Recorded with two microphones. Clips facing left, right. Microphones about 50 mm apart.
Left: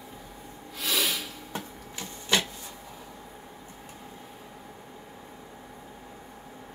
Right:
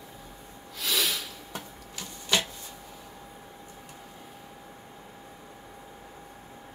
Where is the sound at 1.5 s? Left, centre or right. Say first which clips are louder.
Left 3 dB; left.